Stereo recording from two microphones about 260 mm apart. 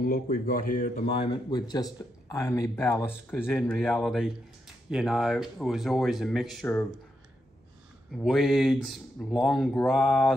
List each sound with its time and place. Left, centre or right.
0.0 s speech: left; by 6.9 s centre
8.1 s speech: centre